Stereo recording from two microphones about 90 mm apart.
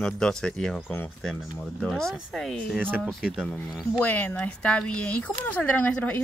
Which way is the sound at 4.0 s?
20° left (ahead or behind).